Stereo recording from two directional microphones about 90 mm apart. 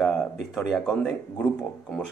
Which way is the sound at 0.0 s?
10° left (ahead or behind).